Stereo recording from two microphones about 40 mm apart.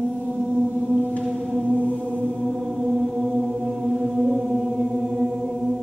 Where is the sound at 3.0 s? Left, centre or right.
Centre.